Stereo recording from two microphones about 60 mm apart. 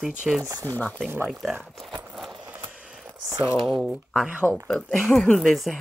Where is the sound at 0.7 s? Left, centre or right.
Left.